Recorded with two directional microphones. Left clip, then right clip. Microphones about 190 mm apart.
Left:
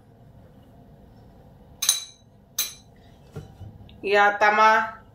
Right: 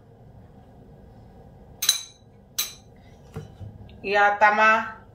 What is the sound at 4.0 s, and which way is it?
Speech, 35° left (ahead or behind).